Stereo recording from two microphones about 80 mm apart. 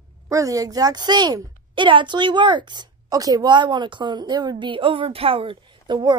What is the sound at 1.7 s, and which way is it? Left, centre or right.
A woman's voice, right.